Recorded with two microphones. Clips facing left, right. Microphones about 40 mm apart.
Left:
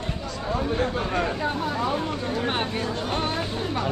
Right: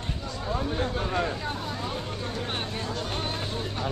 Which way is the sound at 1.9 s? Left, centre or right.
Left.